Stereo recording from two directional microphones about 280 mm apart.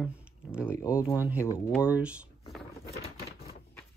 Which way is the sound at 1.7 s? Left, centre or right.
Centre.